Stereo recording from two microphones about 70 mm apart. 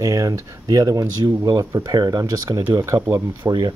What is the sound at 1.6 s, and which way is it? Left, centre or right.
Speech, right.